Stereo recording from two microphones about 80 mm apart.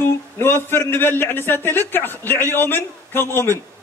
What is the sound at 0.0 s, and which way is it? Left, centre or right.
A man's voice, left.